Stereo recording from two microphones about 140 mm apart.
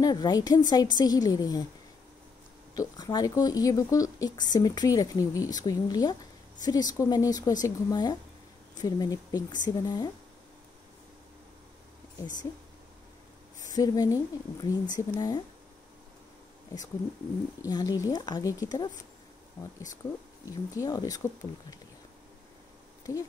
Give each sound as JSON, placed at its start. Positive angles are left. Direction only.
{"t": 0.0, "sound": "speech", "side_deg": 30}
{"t": 2.7, "sound": "speech", "side_deg": 30}
{"t": 13.6, "sound": "speech", "side_deg": 25}
{"t": 17.6, "sound": "speech", "side_deg": 25}
{"t": 20.4, "sound": "speech", "side_deg": 25}